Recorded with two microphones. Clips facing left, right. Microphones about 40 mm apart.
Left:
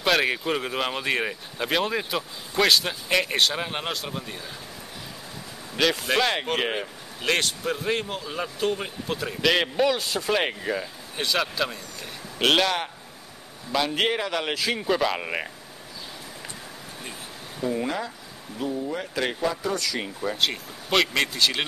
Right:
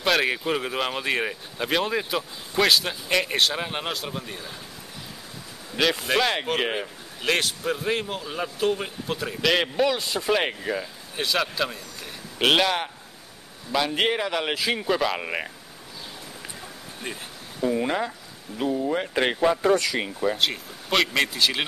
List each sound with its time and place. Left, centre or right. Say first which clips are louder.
0.0 s speech: even; centre
5.8 s speech: even; centre
17.6 s speech: right 3 dB; centre
17.8 s speech: right 3 dB; right
19.9 s speech: right 3 dB; centre
20.3 s speech: even; centre